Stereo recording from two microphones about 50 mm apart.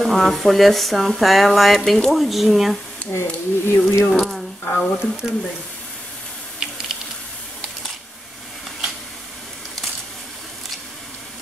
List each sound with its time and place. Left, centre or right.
0.0 s speech: centre
3.1 s speech: left
4.1 s speech: centre
4.6 s speech: left
5.2 s speech: centre